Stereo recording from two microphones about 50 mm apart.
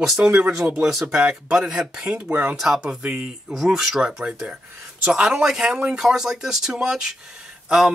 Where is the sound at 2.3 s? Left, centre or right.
Right.